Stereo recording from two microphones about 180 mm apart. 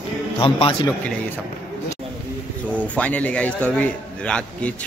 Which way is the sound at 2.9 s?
10° left (ahead or behind).